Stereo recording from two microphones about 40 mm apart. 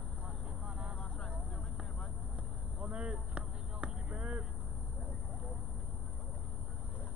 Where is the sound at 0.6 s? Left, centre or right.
Right.